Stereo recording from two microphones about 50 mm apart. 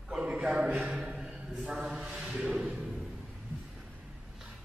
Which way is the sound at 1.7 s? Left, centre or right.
Centre.